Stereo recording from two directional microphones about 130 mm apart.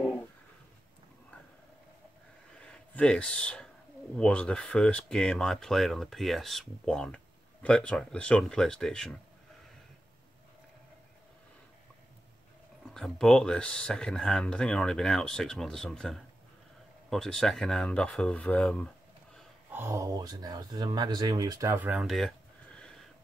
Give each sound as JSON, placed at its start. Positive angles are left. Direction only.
{"t": 2.6, "sound": "a sound", "side_deg": 10}
{"t": 4.2, "sound": "speech", "side_deg": 10}
{"t": 12.9, "sound": "speech", "side_deg": 0}
{"t": 19.7, "sound": "speech", "side_deg": -20}
{"t": 21.7, "sound": "speech", "side_deg": -15}
{"t": 22.0, "sound": "speech", "side_deg": 0}